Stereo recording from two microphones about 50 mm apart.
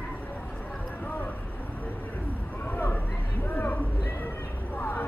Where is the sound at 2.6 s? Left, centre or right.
Left.